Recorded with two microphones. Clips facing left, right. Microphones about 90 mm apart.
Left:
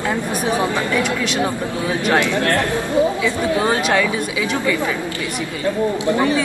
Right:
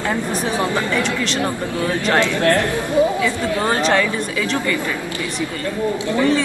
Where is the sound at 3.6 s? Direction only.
5° left (ahead or behind).